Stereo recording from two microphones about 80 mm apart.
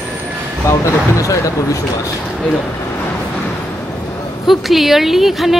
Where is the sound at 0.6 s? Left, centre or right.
Left.